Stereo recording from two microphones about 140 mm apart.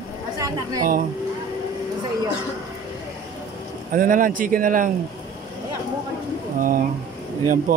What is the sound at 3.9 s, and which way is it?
Speech, 75° right (ahead or behind).